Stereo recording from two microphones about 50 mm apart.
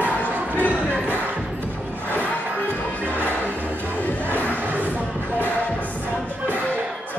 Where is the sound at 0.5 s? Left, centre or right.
Right.